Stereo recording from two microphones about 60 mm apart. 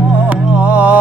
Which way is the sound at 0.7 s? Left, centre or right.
Right.